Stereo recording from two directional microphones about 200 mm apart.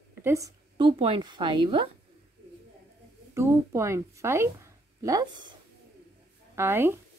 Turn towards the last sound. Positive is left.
turn(degrees=-10)  # may be behind; listen again after turning